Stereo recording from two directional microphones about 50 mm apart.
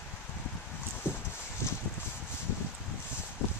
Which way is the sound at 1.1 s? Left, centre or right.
Left.